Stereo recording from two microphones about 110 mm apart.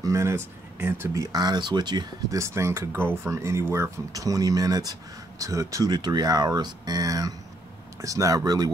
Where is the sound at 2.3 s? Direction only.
25° right (ahead or behind).